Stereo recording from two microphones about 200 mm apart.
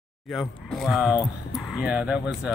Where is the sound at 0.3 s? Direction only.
Centre (ahead or behind).